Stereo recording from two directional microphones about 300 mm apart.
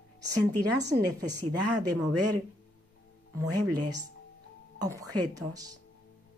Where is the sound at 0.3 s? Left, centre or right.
Right.